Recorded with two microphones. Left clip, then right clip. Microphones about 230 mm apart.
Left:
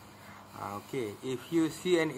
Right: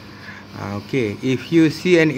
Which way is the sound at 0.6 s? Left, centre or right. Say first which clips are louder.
Right 13 dB; centre.